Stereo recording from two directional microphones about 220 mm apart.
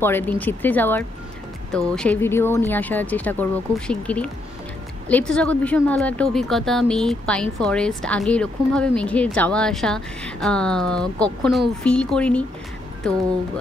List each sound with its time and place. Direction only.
0.0 s speech: 10° left (ahead or behind)